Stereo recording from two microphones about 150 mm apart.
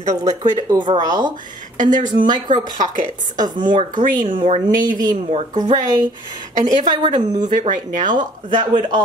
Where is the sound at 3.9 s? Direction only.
65° right (ahead or behind).